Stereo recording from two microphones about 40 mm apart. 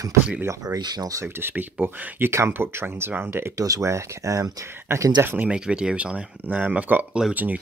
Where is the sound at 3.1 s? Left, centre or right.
Right.